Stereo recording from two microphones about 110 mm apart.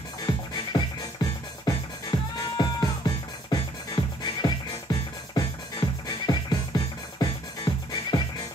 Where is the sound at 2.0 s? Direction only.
40° left (ahead or behind).